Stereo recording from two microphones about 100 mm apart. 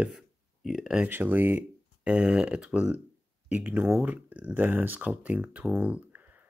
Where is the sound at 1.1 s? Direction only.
20° right (ahead or behind).